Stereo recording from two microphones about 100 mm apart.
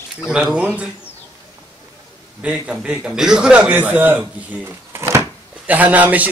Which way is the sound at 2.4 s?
15° right (ahead or behind).